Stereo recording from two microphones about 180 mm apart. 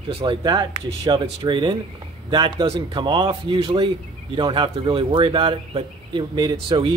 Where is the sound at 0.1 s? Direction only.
30° right (ahead or behind).